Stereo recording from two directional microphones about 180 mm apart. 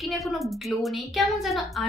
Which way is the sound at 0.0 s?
Centre (ahead or behind).